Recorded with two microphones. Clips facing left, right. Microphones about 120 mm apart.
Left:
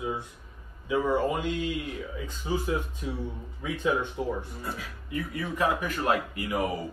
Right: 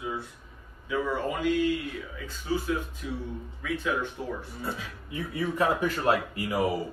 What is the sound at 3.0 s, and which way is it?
A man's voice, 25° left (ahead or behind).